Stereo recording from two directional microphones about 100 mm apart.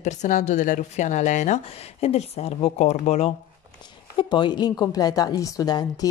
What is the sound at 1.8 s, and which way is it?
Speech, 90° left.